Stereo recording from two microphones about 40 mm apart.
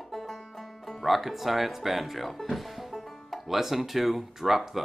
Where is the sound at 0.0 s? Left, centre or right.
Centre.